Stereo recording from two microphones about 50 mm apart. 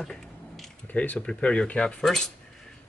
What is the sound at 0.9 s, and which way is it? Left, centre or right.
Speech, left.